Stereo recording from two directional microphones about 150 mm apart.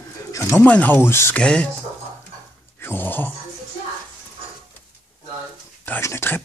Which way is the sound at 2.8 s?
15° left (ahead or behind).